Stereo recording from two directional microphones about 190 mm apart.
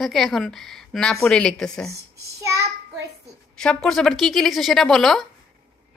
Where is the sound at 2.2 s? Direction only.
15° right (ahead or behind).